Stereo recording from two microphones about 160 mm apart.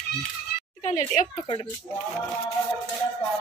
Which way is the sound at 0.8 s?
50° left (ahead or behind).